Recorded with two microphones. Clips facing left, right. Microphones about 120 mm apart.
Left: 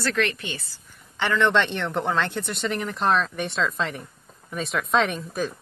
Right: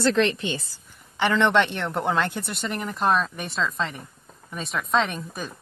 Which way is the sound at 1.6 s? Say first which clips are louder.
Even; 5° right (ahead or behind).